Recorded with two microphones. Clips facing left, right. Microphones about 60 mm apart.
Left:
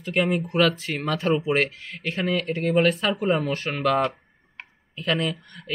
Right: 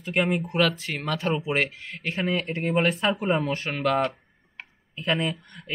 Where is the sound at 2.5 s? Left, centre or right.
Right.